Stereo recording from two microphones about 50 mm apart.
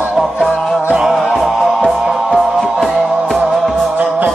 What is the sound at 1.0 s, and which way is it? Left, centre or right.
Music, centre.